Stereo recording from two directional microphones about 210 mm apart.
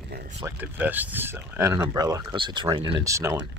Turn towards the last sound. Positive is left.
turn(degrees=-15)  # may be behind; listen again after turning